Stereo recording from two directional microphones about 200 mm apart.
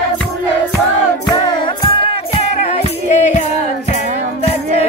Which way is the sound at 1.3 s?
25° left (ahead or behind).